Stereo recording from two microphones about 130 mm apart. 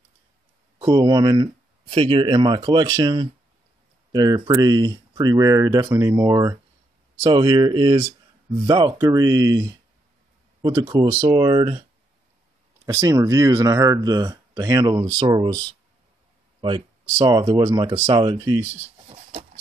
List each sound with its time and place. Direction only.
0.7 s speech: 30° right (ahead or behind)
1.9 s speech: 45° right (ahead or behind); by 6.6 s 25° right (ahead or behind)
7.2 s speech: 35° right (ahead or behind)
12.8 s speech: 20° right (ahead or behind)
16.6 s speech: 35° right (ahead or behind)